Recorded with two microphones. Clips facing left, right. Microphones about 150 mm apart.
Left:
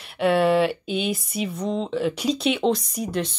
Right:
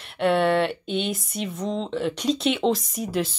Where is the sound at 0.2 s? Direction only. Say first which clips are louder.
Left 2 dB; centre (ahead or behind).